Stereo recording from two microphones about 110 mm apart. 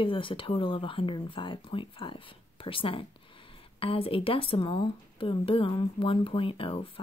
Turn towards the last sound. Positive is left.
turn(degrees=55)  # may be behind; listen again after turning